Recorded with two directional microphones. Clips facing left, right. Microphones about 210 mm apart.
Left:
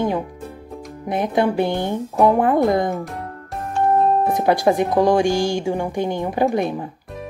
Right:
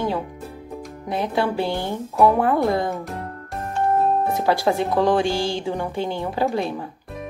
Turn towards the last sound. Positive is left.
turn(degrees=20)  # may be behind; listen again after turning